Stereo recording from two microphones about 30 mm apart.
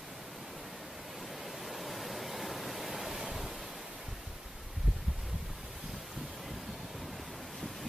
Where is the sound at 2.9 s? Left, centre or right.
Centre.